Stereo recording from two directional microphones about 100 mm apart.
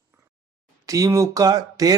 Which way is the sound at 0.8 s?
35° right (ahead or behind).